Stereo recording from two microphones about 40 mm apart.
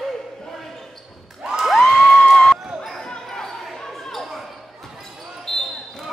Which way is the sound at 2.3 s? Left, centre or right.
Centre.